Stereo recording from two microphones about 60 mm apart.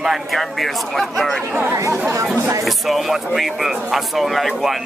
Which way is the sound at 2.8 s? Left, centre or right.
Centre.